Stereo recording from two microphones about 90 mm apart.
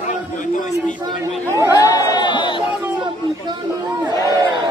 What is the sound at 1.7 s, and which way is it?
Chatter, 45° left (ahead or behind).